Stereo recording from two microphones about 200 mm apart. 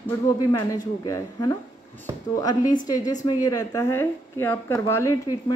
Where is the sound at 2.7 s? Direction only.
20° left (ahead or behind).